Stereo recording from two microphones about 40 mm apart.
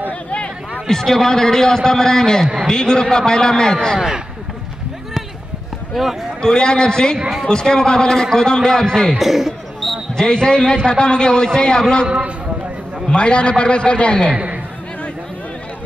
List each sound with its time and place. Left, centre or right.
0.8 s a man's voice: centre
6.0 s speech: centre
6.4 s a man's voice: centre
9.2 s a sound: centre
10.1 s a man's voice: centre
13.1 s a man's voice: left